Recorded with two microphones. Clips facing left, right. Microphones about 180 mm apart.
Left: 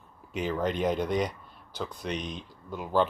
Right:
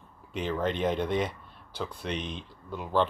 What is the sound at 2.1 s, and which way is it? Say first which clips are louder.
Speech: even; 40° left (ahead or behind).